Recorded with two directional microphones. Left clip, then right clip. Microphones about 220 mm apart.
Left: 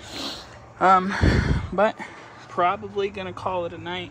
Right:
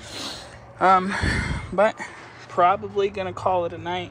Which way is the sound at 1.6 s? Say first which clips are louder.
Right 2 dB; 15° left (ahead or behind).